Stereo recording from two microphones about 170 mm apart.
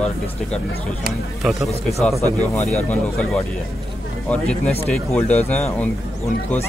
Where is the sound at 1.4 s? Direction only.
Centre (ahead or behind).